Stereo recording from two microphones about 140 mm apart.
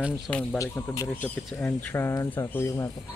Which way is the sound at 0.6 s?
25° left (ahead or behind).